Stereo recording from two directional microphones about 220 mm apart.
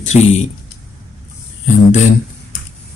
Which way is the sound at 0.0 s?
30° left (ahead or behind).